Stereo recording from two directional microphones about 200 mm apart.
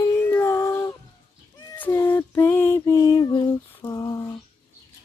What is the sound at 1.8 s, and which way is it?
Female singing, 10° left (ahead or behind).